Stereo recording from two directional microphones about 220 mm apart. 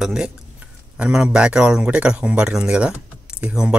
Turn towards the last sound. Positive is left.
turn(degrees=-5)  # may be behind; listen again after turning